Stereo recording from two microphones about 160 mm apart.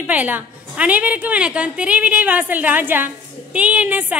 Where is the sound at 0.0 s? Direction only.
10° right (ahead or behind).